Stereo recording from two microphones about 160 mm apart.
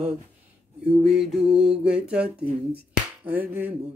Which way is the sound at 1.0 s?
5° right (ahead or behind).